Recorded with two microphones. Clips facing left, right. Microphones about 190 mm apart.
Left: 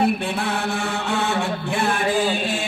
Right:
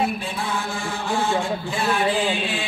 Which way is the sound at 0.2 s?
65° left (ahead or behind).